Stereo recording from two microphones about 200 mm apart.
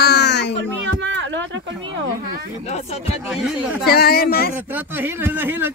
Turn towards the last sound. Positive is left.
turn(degrees=-10)  # may be behind; listen again after turning